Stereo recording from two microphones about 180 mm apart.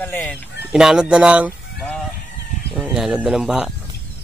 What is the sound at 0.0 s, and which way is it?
Speech, 10° left (ahead or behind).